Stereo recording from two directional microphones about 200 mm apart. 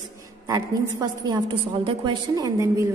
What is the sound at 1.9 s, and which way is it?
A woman's voice, 20° right (ahead or behind).